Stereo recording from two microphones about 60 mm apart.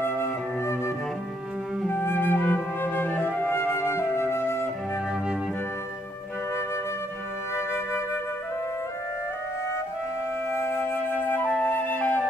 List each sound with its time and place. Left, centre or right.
0.0 s flute: left
7.5 s flute: left
10.5 s flute: left